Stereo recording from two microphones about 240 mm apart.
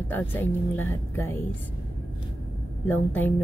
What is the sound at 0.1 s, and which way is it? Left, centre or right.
A woman's voice, centre.